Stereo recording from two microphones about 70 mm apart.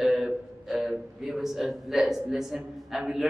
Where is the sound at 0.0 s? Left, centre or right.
Centre.